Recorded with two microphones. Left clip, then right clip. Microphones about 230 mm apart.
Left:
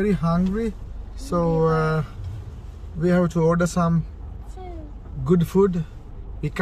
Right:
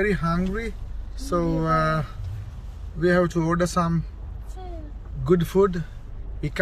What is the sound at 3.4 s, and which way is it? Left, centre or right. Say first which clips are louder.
Speech: left 2 dB; centre.